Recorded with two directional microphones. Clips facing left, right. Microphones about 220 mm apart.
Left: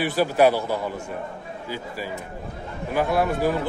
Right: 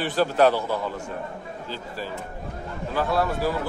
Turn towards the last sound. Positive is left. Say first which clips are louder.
# left 2 dB
turn(degrees=15)  # may be behind; listen again after turning